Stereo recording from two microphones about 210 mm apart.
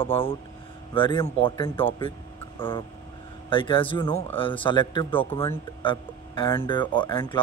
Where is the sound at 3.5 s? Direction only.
25° left (ahead or behind).